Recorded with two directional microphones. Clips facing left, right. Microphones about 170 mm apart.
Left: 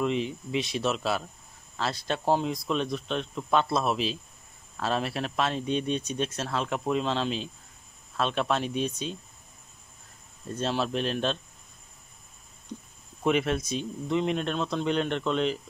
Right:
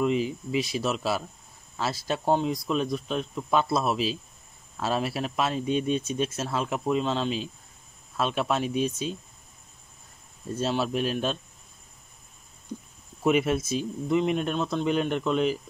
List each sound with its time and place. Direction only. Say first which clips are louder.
0.0 s speech: right 3 dB; 5° right (ahead or behind)
10.5 s speech: right 2 dB; 5° right (ahead or behind)
13.2 s speech: right 2 dB; 5° right (ahead or behind)